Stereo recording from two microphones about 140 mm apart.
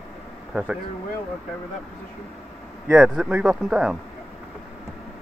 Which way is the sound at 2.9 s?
5° right (ahead or behind).